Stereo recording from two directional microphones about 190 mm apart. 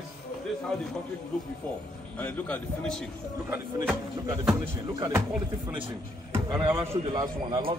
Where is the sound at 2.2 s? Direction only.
10° left (ahead or behind).